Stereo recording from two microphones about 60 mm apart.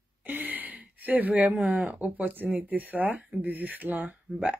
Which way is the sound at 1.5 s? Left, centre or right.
Centre.